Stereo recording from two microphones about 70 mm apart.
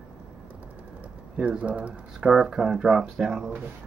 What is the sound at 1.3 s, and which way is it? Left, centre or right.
Speech, centre.